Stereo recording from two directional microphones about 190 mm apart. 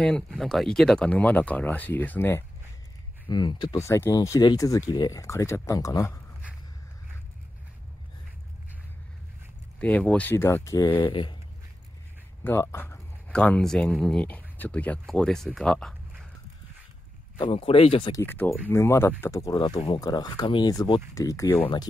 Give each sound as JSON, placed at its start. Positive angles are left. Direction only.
{"t": 0.0, "sound": "speech", "side_deg": 5}
{"t": 3.3, "sound": "speech", "side_deg": 20}
{"t": 9.8, "sound": "speech", "side_deg": 10}
{"t": 12.4, "sound": "speech", "side_deg": 10}
{"t": 17.4, "sound": "speech", "side_deg": 30}
{"t": 18.1, "sound": "speech", "side_deg": 10}